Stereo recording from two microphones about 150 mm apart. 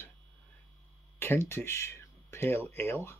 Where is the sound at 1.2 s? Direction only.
15° left (ahead or behind).